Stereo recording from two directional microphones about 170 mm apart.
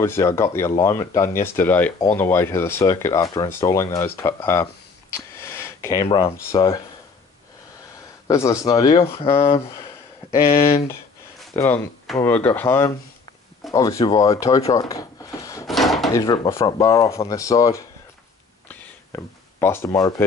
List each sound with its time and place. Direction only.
0.0 s speech: 15° left (ahead or behind)
5.1 s a sound: 15° left (ahead or behind)
6.0 s speech: 35° left (ahead or behind)
8.3 s speech: 20° left (ahead or behind)
8.9 s speech: 30° left (ahead or behind)
11.6 s speech: 15° left (ahead or behind)
14.7 s a sound: 20° left (ahead or behind)
15.6 s drawer open or close: centre (ahead or behind)
16.1 s speech: 20° left (ahead or behind)
18.7 s a sound: 15° left (ahead or behind)